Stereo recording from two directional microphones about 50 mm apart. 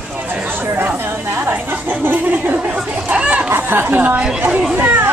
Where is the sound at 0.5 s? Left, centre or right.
Right.